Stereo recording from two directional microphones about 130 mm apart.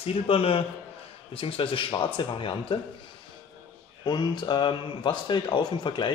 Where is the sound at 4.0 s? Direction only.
35° left (ahead or behind).